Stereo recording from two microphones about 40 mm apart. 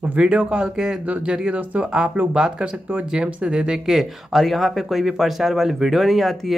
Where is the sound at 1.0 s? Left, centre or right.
Right.